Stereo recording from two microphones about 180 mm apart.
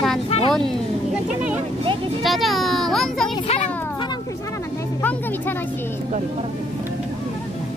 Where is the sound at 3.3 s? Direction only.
35° left (ahead or behind).